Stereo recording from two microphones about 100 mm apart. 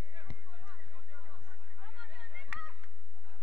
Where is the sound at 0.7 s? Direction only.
15° right (ahead or behind).